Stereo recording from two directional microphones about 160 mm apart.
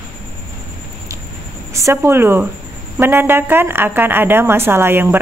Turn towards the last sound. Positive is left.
turn(degrees=-15)  # may be behind; listen again after turning